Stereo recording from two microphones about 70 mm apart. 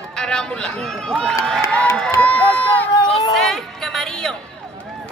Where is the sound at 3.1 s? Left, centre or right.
Centre.